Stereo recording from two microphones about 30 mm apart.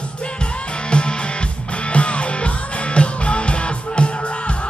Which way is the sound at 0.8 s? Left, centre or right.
Left.